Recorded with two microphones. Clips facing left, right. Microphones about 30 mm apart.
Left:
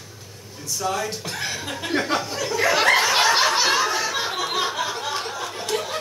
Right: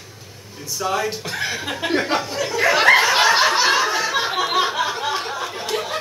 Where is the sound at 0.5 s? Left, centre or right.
Centre.